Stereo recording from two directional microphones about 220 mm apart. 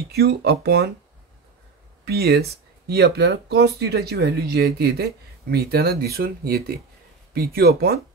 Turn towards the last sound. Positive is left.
turn(degrees=-45)  # may be behind; listen again after turning